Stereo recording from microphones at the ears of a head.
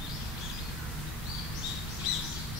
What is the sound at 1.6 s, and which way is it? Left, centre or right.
Bird vocalization, left.